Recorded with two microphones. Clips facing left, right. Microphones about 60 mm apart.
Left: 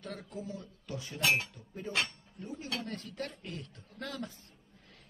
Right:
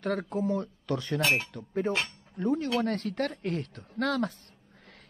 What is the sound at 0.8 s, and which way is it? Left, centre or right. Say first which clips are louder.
Speech: right 4 dB; right.